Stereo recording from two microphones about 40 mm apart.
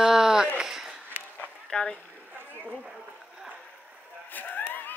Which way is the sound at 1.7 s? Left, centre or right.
Left.